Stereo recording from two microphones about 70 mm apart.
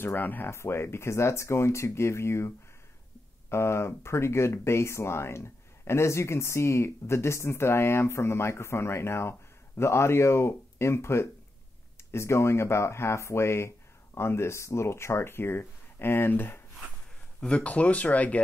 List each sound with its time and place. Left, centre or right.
0.0 s speech: left
17.4 s speech: centre